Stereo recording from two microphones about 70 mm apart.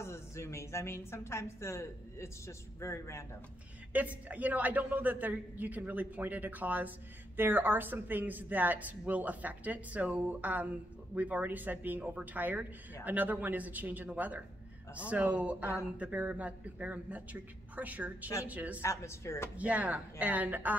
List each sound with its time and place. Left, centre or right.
0.0 s a woman's voice: left
3.9 s a woman's voice: right
18.8 s a woman's voice: left
19.5 s a woman's voice: centre